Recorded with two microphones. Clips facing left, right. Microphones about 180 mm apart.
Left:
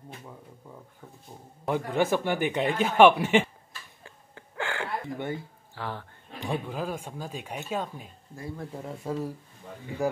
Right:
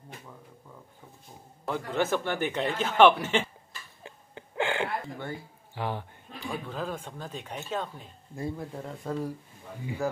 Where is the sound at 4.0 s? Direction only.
20° right (ahead or behind).